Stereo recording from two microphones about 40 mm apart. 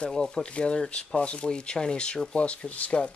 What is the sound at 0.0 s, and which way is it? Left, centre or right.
Speech, left.